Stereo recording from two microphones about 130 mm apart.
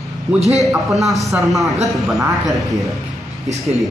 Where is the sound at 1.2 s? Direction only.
Centre (ahead or behind).